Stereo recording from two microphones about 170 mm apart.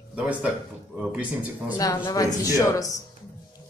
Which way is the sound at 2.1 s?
20° left (ahead or behind).